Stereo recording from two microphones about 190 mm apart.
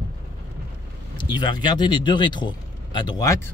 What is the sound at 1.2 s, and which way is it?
Speech, 25° left (ahead or behind).